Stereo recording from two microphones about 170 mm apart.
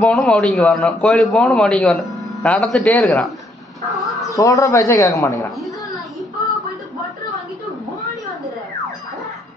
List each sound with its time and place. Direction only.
0.0 s a man's voice: 5° left (ahead or behind)
4.3 s speech: 20° left (ahead or behind)